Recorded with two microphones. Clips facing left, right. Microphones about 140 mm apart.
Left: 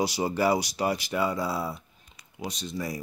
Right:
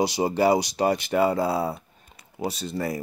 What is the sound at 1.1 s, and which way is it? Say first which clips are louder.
Speech: right 6 dB; 55° right (ahead or behind).